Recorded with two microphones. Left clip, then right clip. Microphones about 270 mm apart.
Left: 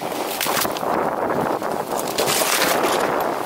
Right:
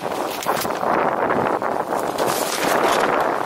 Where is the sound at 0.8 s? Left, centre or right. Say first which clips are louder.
Right 2 dB; centre.